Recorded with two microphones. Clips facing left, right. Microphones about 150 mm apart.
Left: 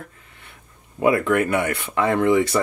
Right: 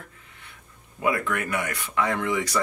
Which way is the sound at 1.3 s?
30° left (ahead or behind).